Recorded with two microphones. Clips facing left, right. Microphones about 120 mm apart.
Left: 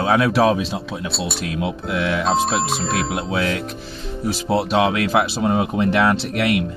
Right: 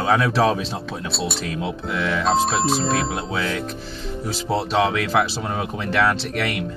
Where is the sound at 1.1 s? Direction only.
Centre (ahead or behind).